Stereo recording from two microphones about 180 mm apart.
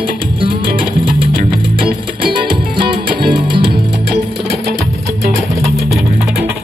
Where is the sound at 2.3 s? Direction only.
25° right (ahead or behind).